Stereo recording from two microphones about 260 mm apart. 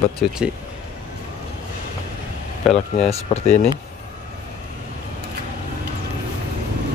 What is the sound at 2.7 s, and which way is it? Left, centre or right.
Speech, left.